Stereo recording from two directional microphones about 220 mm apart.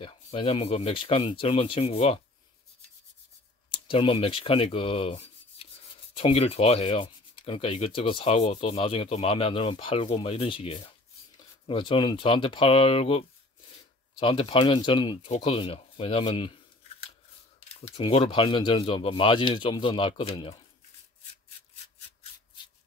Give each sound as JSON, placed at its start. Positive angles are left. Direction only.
{"t": 0.0, "sound": "rub", "side_deg": 25}
{"t": 3.7, "sound": "rub", "side_deg": 25}
{"t": 14.2, "sound": "rub", "side_deg": 25}
{"t": 17.7, "sound": "rub", "side_deg": 25}